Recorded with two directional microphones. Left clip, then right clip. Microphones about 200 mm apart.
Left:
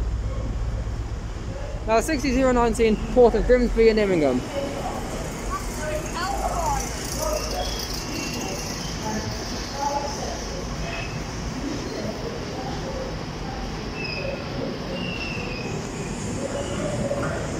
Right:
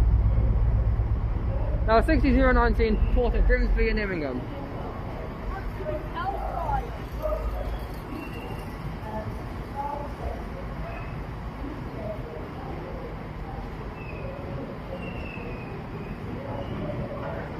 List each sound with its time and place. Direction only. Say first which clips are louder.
1.9 s speech: even; 5° left (ahead or behind)
3.2 s speech: left 12 dB; 30° left (ahead or behind)